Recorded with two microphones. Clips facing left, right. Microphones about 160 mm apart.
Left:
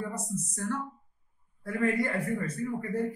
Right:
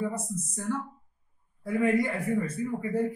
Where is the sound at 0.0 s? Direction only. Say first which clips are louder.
Right 3 dB; 10° right (ahead or behind).